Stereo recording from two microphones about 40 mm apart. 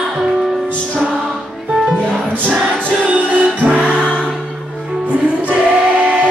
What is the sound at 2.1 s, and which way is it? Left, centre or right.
Music, right.